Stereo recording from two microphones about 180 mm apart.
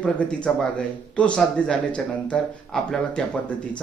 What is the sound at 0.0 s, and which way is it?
Speech, 5° left (ahead or behind).